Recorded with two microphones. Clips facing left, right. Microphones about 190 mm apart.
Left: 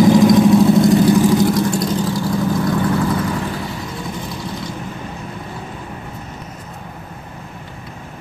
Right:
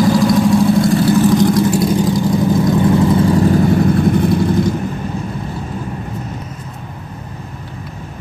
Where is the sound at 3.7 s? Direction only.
55° right (ahead or behind).